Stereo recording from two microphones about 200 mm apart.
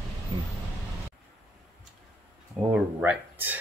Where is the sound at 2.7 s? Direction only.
5° right (ahead or behind).